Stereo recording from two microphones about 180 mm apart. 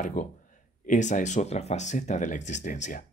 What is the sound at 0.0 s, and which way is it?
Speech, 45° left (ahead or behind).